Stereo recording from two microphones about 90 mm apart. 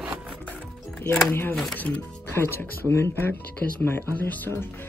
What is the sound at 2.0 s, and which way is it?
Speech, 25° left (ahead or behind).